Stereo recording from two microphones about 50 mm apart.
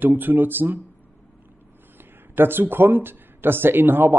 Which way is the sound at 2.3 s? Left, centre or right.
Right.